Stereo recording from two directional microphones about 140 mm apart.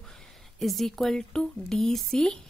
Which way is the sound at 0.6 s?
Centre (ahead or behind).